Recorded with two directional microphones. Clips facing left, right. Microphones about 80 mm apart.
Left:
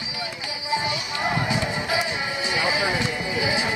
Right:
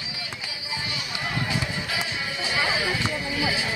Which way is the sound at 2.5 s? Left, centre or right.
Left.